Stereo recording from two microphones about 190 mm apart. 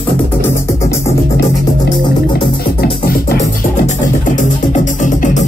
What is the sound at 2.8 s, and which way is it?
Music, 55° left (ahead or behind).